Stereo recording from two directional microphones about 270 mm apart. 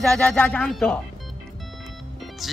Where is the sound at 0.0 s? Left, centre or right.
Centre.